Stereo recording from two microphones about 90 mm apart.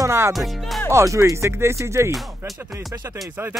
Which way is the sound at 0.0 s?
30° right (ahead or behind).